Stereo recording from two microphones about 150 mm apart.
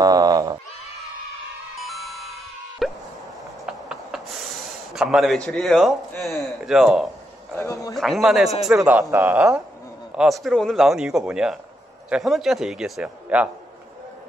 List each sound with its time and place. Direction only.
0.0 s neigh: 25° right (ahead or behind)
1.8 s music: centre (ahead or behind)
2.8 s plop: centre (ahead or behind)
3.6 s a sound: 5° right (ahead or behind)
4.9 s a man's voice: 5° right (ahead or behind)
7.5 s speech: 20° left (ahead or behind)
7.9 s a man's voice: centre (ahead or behind)
10.1 s a man's voice: centre (ahead or behind)